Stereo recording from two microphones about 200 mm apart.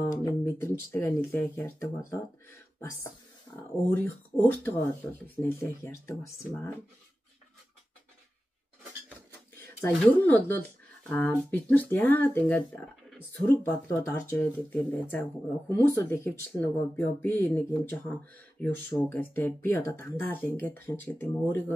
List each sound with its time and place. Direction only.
0.0 s speech: 15° left (ahead or behind)
3.7 s speech: 10° left (ahead or behind)
9.8 s speech: 10° left (ahead or behind)
13.6 s speech: 15° left (ahead or behind)